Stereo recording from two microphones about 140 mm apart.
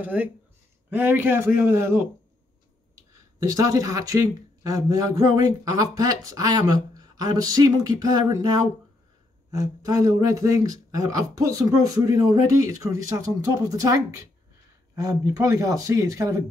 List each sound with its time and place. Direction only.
0.0 s speech: 15° right (ahead or behind)